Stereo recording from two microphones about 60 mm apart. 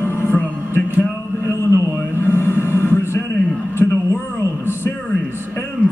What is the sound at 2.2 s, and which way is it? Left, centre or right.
Music, left.